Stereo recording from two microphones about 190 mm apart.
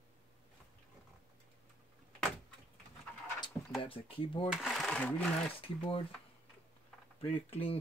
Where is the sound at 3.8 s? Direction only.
30° left (ahead or behind).